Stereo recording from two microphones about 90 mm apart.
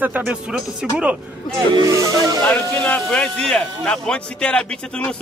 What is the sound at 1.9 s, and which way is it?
Music, 35° right (ahead or behind).